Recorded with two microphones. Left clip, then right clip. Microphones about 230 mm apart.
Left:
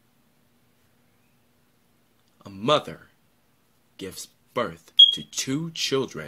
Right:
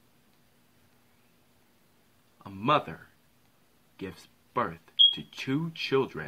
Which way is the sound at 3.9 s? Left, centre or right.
Centre.